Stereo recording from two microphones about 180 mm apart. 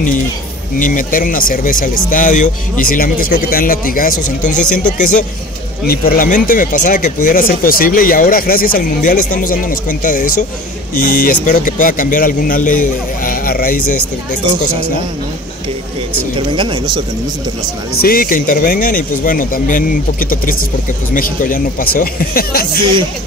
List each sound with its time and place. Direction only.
0.7 s speech: 50° left (ahead or behind)
16.3 s speech: 25° right (ahead or behind)
18.0 s speech: 55° left (ahead or behind)